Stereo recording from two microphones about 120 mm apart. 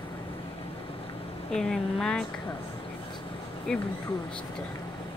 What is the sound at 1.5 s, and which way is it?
Speech, 5° left (ahead or behind).